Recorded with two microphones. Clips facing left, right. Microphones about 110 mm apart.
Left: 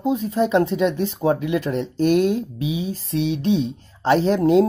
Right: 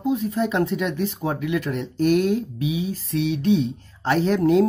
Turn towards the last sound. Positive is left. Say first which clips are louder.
# left 2 dB
turn(degrees=25)  # may be behind; listen again after turning